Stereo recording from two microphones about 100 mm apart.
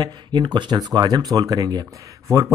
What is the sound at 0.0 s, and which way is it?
Speech, 45° right (ahead or behind).